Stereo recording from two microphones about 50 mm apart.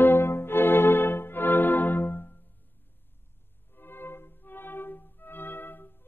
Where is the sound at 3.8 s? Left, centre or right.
Left.